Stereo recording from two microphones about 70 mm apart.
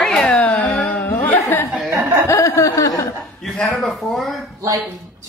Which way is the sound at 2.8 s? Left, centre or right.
Left.